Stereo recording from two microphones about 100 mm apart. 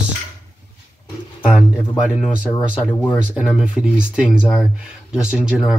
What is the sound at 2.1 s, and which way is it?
Speech, 5° right (ahead or behind).